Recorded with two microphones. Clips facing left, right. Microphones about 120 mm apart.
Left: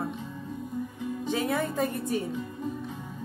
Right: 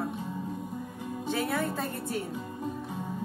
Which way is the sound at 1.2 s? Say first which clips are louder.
Left 1 dB; 15° left (ahead or behind).